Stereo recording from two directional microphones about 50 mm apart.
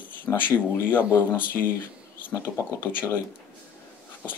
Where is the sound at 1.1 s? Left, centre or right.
Left.